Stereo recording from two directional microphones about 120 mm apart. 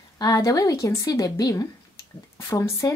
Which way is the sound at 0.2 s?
30° left (ahead or behind).